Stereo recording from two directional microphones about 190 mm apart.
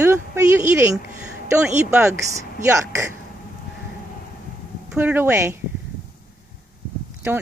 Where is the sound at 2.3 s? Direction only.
15° right (ahead or behind).